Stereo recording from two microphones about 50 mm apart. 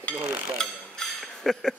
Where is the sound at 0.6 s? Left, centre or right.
Centre.